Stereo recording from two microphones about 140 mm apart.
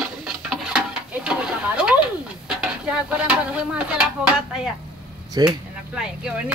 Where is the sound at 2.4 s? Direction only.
10° right (ahead or behind).